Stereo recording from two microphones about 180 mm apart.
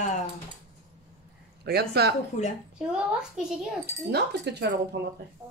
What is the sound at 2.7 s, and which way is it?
A woman's voice, 5° right (ahead or behind).